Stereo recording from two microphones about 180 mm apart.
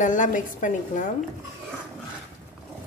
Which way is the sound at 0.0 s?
45° left (ahead or behind).